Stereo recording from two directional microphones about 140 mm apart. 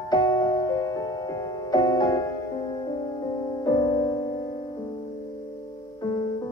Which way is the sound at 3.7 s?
30° left (ahead or behind).